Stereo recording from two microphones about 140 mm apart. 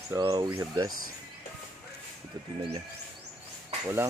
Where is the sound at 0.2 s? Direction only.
35° right (ahead or behind).